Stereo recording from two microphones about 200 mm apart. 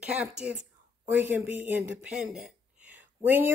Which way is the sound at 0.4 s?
5° right (ahead or behind).